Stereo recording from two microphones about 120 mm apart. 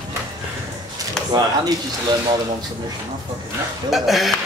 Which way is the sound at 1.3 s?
30° right (ahead or behind).